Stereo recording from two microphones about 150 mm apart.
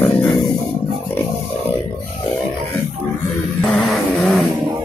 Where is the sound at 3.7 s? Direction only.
Centre (ahead or behind).